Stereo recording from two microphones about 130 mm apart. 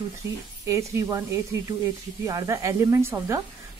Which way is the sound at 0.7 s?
20° right (ahead or behind).